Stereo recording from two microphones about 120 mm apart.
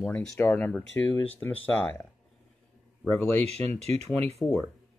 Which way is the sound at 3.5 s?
60° right (ahead or behind).